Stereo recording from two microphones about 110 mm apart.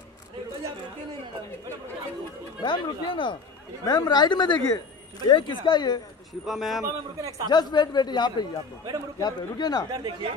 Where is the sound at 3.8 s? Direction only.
35° left (ahead or behind).